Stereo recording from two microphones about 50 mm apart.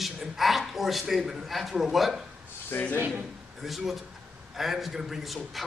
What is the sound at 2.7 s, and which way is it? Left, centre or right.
Speech, left.